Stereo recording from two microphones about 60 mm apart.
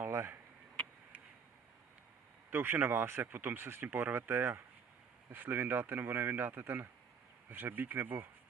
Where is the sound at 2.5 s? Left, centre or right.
Right.